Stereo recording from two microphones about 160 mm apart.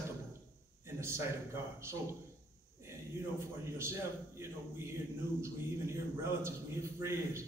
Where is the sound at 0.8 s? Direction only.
15° right (ahead or behind).